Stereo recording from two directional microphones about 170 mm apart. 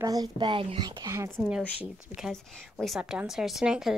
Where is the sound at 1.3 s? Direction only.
Centre (ahead or behind).